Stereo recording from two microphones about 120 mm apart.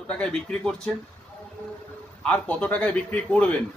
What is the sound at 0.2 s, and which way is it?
Speech, 5° left (ahead or behind).